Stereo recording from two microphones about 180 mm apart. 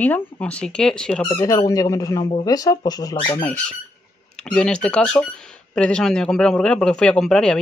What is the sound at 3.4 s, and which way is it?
Speech, 5° left (ahead or behind).